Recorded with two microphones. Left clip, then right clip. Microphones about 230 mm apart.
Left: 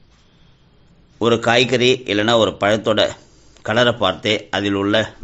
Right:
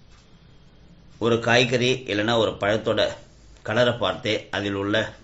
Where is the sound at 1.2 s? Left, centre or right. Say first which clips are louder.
Left 5 dB; left.